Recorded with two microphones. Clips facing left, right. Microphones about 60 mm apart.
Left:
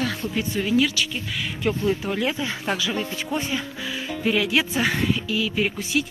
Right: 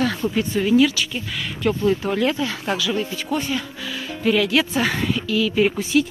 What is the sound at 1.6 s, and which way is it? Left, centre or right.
Speech, centre.